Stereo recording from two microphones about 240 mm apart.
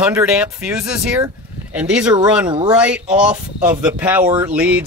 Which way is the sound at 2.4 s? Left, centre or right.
Centre.